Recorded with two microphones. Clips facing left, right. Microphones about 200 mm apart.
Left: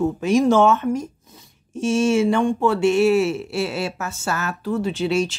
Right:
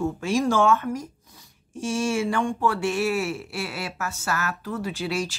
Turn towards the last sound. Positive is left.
turn(degrees=25)  # may be behind; listen again after turning